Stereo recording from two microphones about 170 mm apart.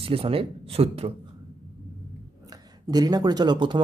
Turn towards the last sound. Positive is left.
turn(degrees=-25)  # may be behind; listen again after turning